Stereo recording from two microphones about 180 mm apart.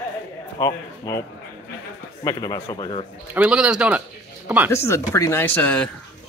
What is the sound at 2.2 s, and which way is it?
Speech, 20° left (ahead or behind).